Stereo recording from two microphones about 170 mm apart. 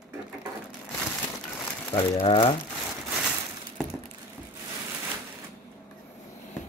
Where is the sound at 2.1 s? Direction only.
30° left (ahead or behind).